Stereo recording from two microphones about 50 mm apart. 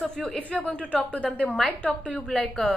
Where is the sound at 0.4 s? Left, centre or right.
Left.